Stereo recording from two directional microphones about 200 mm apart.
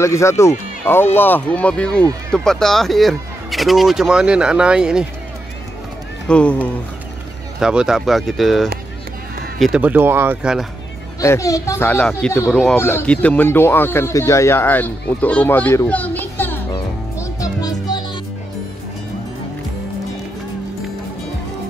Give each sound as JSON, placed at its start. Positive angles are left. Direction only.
{"t": 0.0, "sound": "speech", "side_deg": 15}
{"t": 6.2, "sound": "speech", "side_deg": 5}
{"t": 7.6, "sound": "speech", "side_deg": -5}
{"t": 11.1, "sound": "speech", "side_deg": 15}
{"t": 12.4, "sound": "speech", "side_deg": 0}
{"t": 12.7, "sound": "speech", "side_deg": 10}
{"t": 16.7, "sound": "music", "side_deg": 20}